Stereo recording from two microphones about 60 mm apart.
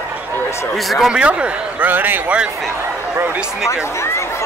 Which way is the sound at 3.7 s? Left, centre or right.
Left.